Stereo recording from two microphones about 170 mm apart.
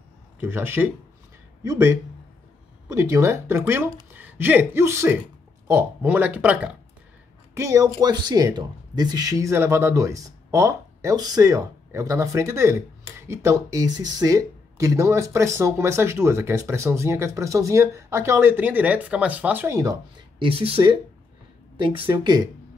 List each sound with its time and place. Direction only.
0.4 s speech: 10° right (ahead or behind)
7.5 s speech: 20° right (ahead or behind)
20.4 s speech: 35° right (ahead or behind)